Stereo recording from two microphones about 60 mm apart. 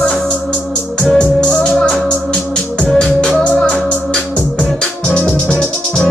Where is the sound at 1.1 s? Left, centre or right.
Centre.